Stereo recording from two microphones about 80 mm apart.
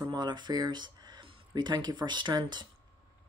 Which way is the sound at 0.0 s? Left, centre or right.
Right.